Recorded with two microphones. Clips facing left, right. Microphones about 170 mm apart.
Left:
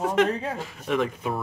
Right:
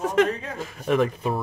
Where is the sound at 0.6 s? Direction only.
40° right (ahead or behind).